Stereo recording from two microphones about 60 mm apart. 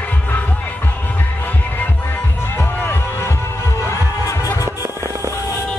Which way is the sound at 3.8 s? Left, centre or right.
Left.